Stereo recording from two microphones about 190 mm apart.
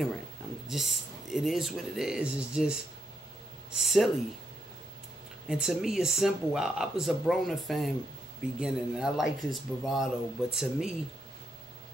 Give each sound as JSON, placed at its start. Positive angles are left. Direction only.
{"t": 0.7, "sound": "speech", "side_deg": 0}
{"t": 5.5, "sound": "speech", "side_deg": 0}